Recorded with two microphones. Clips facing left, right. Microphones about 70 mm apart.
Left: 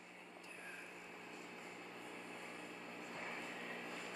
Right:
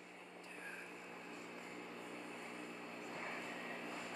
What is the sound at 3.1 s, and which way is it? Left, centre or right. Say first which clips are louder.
Vehicle: right 1 dB; centre.